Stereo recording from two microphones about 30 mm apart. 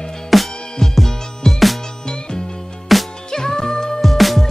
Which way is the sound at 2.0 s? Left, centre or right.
Left.